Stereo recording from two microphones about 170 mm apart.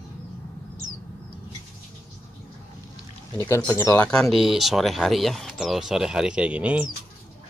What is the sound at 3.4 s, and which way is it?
Speech, 15° left (ahead or behind).